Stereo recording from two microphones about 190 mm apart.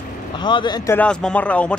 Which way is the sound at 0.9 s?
5° left (ahead or behind).